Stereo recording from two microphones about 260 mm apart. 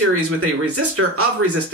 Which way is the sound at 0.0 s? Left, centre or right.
Right.